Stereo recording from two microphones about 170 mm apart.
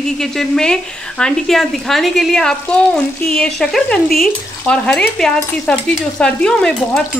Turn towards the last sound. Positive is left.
turn(degrees=5)  # may be behind; listen again after turning